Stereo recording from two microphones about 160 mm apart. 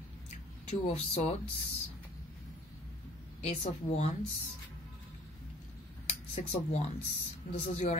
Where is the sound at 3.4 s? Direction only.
45° left (ahead or behind).